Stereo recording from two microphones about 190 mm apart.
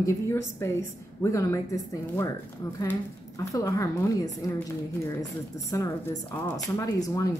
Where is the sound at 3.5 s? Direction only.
15° left (ahead or behind).